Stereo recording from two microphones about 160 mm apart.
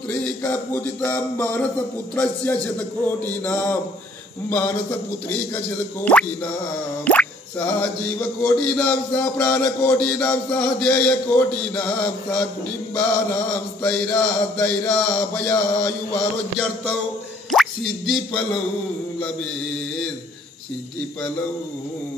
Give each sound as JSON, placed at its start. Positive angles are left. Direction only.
{"t": 0.2, "sound": "music", "side_deg": 10}
{"t": 5.9, "sound": "music", "side_deg": 10}
{"t": 17.5, "sound": "speech", "side_deg": 0}